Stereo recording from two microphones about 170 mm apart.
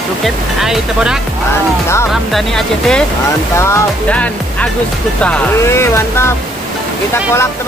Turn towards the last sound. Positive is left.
turn(degrees=15)  # may be behind; listen again after turning